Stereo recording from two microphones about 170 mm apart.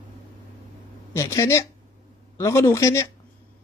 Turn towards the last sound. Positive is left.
turn(degrees=15)  # may be behind; listen again after turning